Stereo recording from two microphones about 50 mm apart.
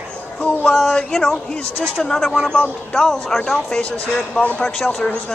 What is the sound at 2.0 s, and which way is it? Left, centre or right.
Speech, centre.